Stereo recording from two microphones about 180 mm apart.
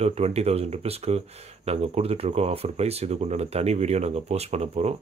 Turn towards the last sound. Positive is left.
turn(degrees=-35)  # may be behind; listen again after turning